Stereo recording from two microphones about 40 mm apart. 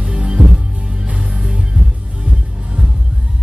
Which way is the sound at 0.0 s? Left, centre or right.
Right.